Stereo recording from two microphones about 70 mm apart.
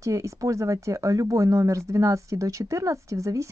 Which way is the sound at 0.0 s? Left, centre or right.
Right.